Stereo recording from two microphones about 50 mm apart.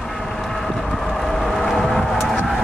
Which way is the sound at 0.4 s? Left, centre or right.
Centre.